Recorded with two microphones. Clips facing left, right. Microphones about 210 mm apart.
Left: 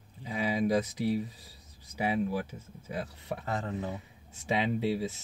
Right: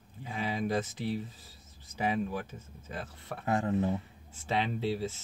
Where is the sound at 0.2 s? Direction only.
15° left (ahead or behind).